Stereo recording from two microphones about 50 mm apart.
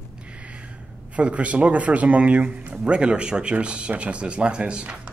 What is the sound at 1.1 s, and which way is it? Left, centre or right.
Speech, right.